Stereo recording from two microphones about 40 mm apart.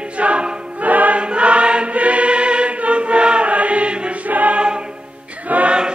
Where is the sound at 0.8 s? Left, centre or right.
Right.